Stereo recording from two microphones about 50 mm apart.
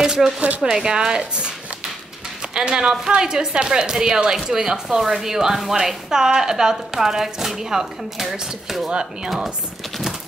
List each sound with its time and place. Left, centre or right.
0.0 s shuffling cards: centre
0.6 s speech: centre
2.5 s speech: centre